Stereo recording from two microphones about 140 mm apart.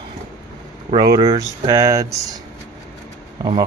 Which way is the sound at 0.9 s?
25° right (ahead or behind).